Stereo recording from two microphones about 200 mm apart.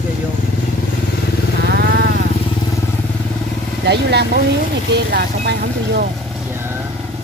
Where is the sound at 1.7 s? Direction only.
55° right (ahead or behind).